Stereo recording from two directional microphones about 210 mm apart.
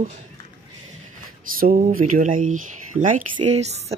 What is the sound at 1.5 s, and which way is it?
Speech, 40° right (ahead or behind).